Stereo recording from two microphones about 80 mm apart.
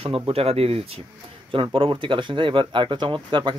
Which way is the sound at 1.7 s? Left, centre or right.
Right.